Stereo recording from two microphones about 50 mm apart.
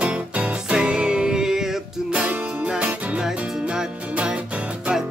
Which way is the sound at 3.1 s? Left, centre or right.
Centre.